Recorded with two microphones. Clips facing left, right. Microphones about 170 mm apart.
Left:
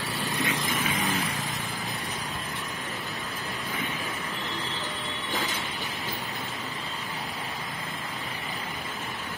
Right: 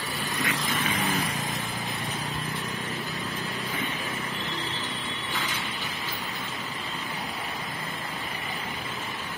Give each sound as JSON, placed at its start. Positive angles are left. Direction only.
{"t": 0.4, "sound": "vehicle", "side_deg": 20}
{"t": 0.8, "sound": "vehicle", "side_deg": 0}